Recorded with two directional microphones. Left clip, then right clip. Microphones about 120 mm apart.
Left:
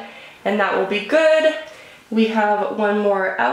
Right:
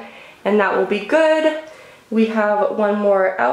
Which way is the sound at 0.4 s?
20° right (ahead or behind).